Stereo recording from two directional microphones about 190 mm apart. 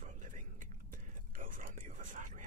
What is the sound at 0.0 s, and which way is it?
Whispering, 40° right (ahead or behind).